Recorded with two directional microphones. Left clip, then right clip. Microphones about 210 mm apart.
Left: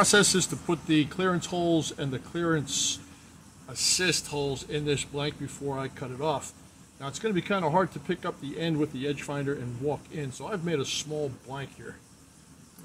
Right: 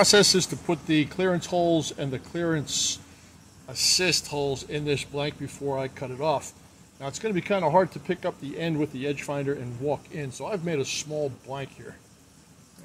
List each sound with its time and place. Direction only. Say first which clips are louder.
0.0 s speech: right 3 dB; 20° right (ahead or behind)